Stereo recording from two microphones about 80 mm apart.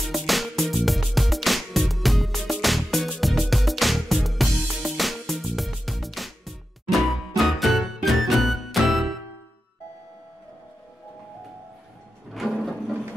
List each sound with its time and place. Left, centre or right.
0.0 s music: centre
12.4 s music: centre